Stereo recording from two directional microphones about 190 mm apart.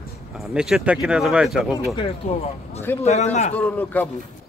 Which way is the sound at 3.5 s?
5° left (ahead or behind).